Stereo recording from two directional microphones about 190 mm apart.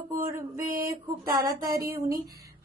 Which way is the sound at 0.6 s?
55° right (ahead or behind).